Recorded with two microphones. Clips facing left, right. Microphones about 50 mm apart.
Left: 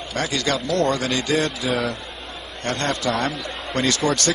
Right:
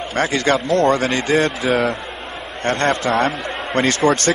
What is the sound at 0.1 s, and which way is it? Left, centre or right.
A man's voice, right.